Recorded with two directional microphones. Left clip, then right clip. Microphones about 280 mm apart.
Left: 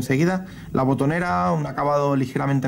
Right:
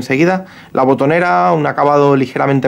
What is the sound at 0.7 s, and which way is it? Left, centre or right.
Speech, centre.